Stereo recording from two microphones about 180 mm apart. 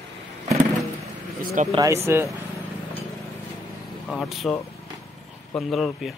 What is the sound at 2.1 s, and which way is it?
Speech, 15° right (ahead or behind).